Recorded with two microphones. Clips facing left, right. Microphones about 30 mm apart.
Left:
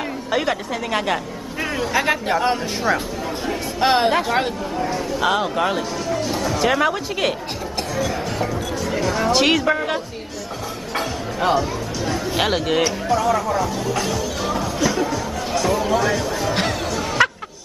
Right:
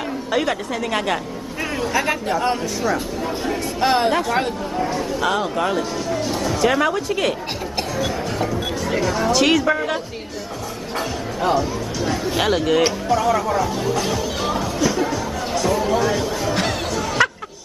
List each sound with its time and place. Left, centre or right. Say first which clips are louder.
0.3 s a woman's voice: even; centre
2.2 s a woman's voice: left 1 dB; left
3.8 s a woman's voice: left 1 dB; centre
4.7 s a woman's voice: right 1 dB; centre
6.0 s a sound: even; centre
6.6 s a woman's voice: right 1 dB; centre
9.0 s speech: left 1 dB; centre
9.3 s a woman's voice: even; centre
11.5 s chatter: even; centre
12.4 s a woman's voice: right 2 dB; centre
13.1 s speech: left 1 dB; centre
14.0 s music: right 1 dB; centre
15.8 s speech: even; centre
16.6 s chatter: even; centre